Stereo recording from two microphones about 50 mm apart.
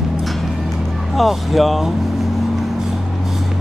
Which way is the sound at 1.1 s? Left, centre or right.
Centre.